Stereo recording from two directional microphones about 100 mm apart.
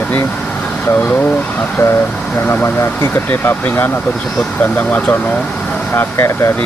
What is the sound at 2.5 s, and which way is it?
Speech, 25° left (ahead or behind).